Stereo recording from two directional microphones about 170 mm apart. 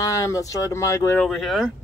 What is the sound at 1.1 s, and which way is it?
Speech, centre (ahead or behind).